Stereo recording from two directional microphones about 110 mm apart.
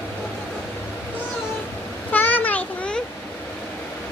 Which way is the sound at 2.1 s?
15° left (ahead or behind).